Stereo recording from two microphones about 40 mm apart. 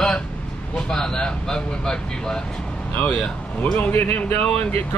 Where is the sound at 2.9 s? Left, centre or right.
Left.